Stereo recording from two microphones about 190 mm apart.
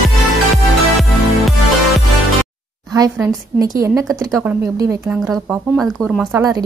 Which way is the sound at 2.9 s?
20° right (ahead or behind).